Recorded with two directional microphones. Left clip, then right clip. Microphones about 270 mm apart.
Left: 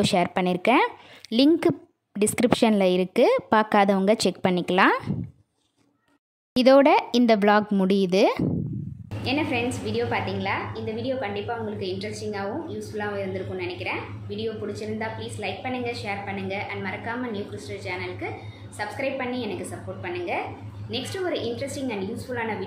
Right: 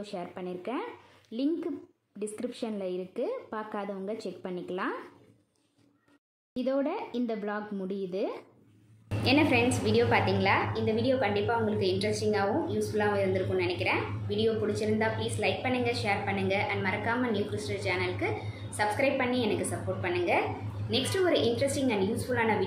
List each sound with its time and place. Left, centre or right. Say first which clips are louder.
0.0 s a woman's voice: left 16 dB; left
6.5 s a woman's voice: left 14 dB; left
9.2 s a woman's voice: right 1 dB; centre